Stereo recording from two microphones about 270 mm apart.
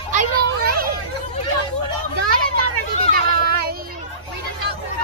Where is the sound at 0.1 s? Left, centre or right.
Right.